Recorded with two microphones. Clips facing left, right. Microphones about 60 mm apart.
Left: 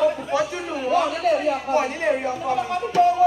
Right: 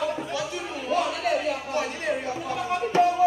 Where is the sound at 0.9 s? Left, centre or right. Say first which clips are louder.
Left 5 dB; left.